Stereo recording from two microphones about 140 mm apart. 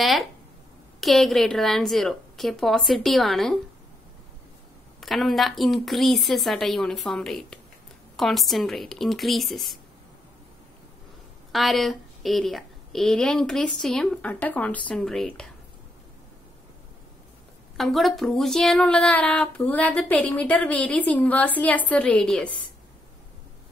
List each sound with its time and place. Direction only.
0.0 s a woman's voice: centre (ahead or behind)
5.0 s a woman's voice: centre (ahead or behind)
11.5 s a woman's voice: centre (ahead or behind)
17.7 s speech: centre (ahead or behind)